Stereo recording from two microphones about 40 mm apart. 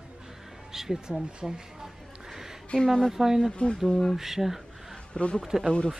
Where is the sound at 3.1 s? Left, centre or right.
Centre.